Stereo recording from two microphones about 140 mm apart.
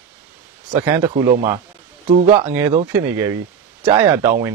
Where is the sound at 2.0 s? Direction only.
50° right (ahead or behind).